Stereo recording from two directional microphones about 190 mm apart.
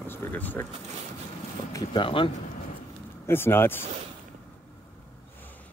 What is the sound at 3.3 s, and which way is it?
Speech, 10° left (ahead or behind).